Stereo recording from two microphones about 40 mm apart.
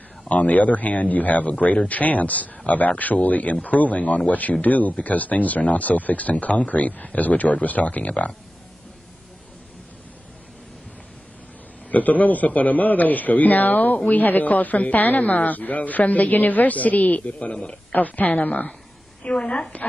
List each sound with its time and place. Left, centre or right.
0.3 s speech: left
11.9 s a man's voice: left
19.2 s a woman's voice: left